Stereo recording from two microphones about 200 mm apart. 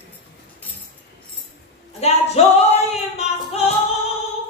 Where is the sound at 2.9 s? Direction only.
30° left (ahead or behind).